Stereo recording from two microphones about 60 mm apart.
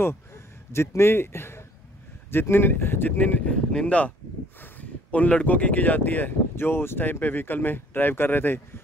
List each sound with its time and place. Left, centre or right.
0.0 s speech: left
6.5 s speech: left